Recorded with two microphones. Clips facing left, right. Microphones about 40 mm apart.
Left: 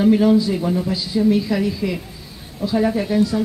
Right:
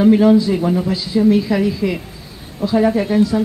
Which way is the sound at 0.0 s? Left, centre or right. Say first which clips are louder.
Right 3 dB; centre.